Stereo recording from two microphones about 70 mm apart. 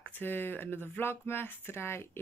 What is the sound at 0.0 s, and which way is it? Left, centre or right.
Speech, left.